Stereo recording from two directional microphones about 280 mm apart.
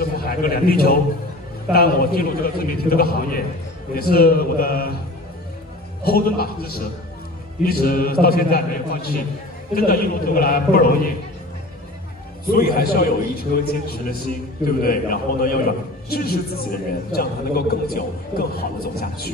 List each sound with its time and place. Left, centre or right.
0.0 s a man's voice: left
6.0 s a man's voice: left
12.5 s a man's voice: left